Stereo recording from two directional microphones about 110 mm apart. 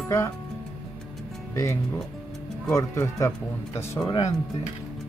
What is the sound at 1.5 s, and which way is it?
Speech, 30° left (ahead or behind).